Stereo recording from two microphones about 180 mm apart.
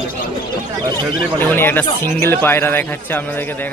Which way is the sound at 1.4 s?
10° left (ahead or behind).